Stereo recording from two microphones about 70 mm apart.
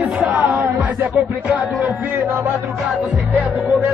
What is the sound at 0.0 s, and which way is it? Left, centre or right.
Music, right.